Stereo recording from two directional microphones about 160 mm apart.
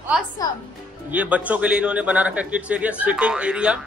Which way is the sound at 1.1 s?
10° right (ahead or behind).